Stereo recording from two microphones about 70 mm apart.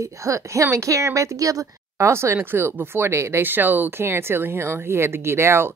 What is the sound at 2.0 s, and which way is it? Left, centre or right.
A woman's voice, right.